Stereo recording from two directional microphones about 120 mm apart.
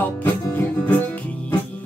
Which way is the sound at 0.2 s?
15° left (ahead or behind).